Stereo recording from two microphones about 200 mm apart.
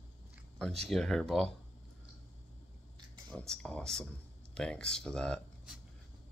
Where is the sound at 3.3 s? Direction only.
5° left (ahead or behind).